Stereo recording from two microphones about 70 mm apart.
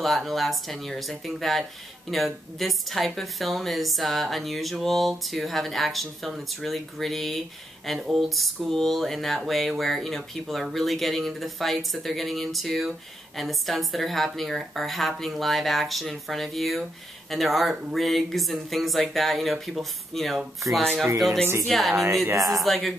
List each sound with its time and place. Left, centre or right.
0.0 s a woman's voice: centre
22.3 s speech: right
22.6 s a woman's voice: centre